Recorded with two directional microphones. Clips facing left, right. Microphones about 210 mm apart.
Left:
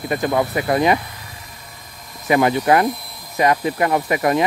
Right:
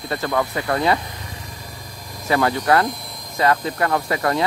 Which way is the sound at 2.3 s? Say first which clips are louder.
Left 3 dB; 15° left (ahead or behind).